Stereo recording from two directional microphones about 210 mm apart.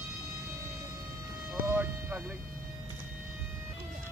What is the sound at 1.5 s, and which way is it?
Music, 10° right (ahead or behind).